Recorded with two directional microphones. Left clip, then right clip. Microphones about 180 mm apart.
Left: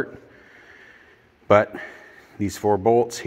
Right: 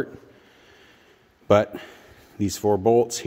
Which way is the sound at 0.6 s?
30° right (ahead or behind).